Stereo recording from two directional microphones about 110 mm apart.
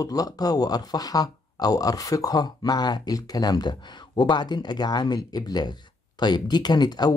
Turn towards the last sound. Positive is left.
turn(degrees=40)  # may be behind; listen again after turning